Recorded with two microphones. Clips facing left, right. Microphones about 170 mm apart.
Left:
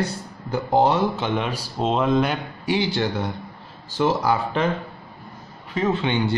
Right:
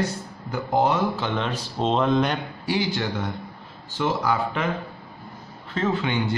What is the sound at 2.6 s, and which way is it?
Speech, 20° left (ahead or behind).